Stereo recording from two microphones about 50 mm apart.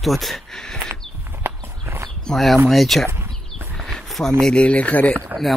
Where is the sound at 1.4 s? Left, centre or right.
Right.